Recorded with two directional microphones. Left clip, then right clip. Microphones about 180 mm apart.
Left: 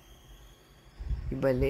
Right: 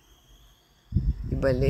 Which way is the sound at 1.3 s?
20° right (ahead or behind).